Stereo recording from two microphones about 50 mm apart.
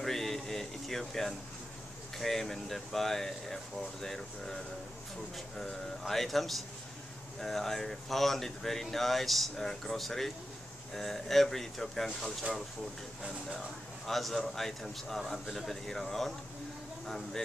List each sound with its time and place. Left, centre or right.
0.0 s a sound: centre
2.1 s speech: centre
5.6 s speech: centre
14.0 s speech: centre